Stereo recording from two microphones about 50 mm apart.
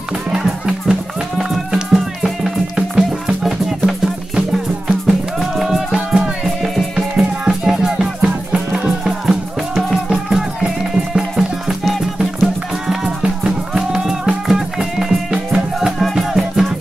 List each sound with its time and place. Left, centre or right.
0.3 s music: centre
16.2 s music: centre